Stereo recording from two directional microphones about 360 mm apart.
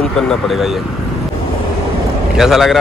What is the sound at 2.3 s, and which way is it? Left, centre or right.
Speech, centre.